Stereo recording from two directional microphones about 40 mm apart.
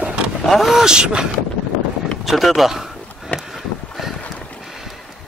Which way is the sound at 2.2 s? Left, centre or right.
Centre.